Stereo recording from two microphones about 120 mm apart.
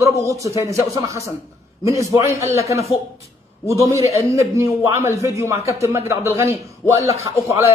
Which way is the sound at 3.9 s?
25° right (ahead or behind).